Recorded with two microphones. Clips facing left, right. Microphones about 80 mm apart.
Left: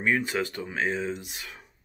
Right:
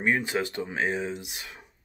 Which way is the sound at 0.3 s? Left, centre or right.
Centre.